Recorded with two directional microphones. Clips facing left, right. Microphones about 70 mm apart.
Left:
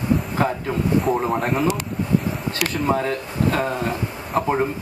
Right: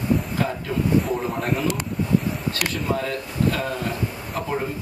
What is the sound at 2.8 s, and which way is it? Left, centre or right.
Speech, left.